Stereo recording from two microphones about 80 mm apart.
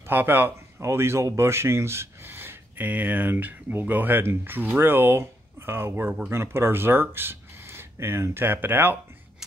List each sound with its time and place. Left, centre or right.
0.0 s speech: right